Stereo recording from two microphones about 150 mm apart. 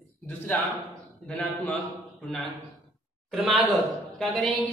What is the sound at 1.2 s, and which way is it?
A woman's voice, 10° left (ahead or behind).